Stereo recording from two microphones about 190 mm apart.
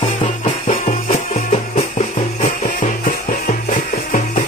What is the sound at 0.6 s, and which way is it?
Music, 45° left (ahead or behind).